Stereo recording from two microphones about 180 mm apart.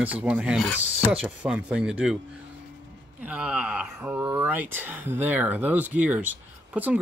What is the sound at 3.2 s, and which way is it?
Speech, 5° right (ahead or behind).